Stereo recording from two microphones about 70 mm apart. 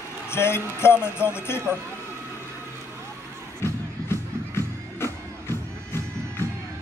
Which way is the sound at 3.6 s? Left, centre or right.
Left.